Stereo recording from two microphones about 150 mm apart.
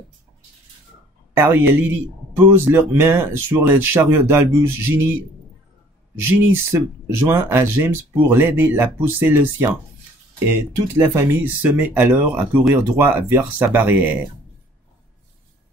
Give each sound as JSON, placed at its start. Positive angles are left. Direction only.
{"t": 1.3, "sound": "speech", "side_deg": -15}
{"t": 6.3, "sound": "speech", "side_deg": -15}
{"t": 11.0, "sound": "speech", "side_deg": -15}